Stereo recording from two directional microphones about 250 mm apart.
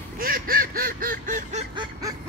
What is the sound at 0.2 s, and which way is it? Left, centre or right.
Duck, right.